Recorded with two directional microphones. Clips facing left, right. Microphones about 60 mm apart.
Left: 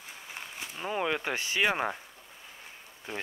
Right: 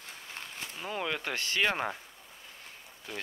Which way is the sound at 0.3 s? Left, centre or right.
Centre.